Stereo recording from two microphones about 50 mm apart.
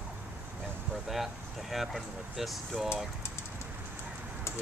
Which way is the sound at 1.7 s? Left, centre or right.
Centre.